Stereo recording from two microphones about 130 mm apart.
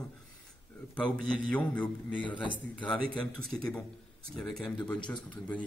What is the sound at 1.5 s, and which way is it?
Speech, 10° left (ahead or behind).